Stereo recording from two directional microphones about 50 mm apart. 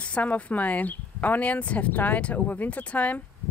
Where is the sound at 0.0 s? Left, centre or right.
Left.